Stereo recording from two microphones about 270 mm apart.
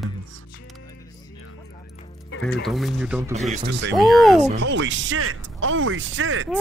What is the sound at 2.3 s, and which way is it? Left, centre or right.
Speech, left.